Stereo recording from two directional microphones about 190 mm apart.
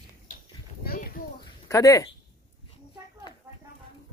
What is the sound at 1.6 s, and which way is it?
Speech, 15° left (ahead or behind).